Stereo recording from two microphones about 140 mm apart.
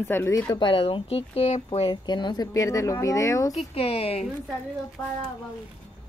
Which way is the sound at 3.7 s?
45° left (ahead or behind).